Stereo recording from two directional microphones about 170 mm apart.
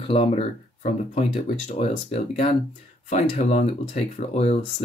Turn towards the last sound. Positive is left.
turn(degrees=40)  # may be behind; listen again after turning